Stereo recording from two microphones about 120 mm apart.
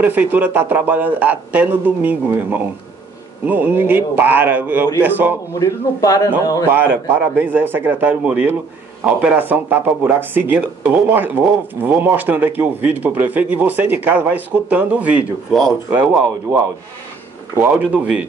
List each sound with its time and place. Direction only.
0.0 s speech: 15° right (ahead or behind)
5.6 s a man's voice: 30° left (ahead or behind)
6.7 s speech: 15° right (ahead or behind)
17.6 s speech: 10° right (ahead or behind)